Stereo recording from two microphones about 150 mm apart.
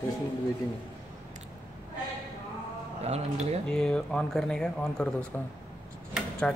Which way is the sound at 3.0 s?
45° right (ahead or behind).